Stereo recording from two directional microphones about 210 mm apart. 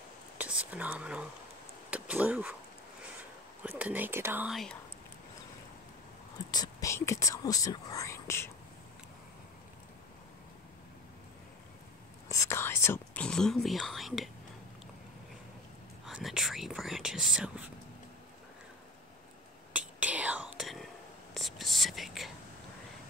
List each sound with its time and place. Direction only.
0.4 s whispering: 5° right (ahead or behind)
1.9 s a sound: 5° right (ahead or behind)
3.6 s speech: 10° right (ahead or behind)
6.5 s speech: 15° left (ahead or behind)
12.3 s whispering: 15° left (ahead or behind)
16.1 s whispering: centre (ahead or behind)
19.7 s whispering: 5° right (ahead or behind)